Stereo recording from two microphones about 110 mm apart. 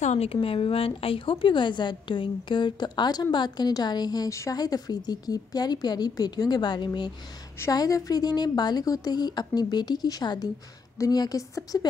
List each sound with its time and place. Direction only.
0.0 s a woman's voice: 80° left; by 11.9 s 30° left (ahead or behind)